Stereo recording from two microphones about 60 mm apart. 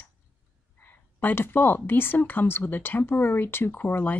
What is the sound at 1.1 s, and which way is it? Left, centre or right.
A woman's voice, left.